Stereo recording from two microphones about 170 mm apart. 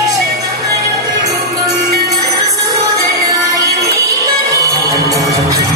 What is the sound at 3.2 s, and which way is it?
Music, 20° right (ahead or behind).